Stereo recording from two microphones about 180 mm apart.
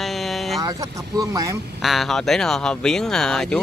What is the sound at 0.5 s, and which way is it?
Speech, 20° right (ahead or behind).